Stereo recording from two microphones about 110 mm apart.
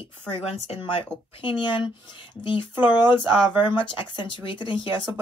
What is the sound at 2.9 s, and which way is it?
Speech, 45° left (ahead or behind).